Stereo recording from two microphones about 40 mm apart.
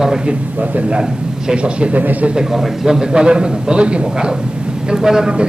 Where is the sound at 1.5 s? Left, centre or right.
Right.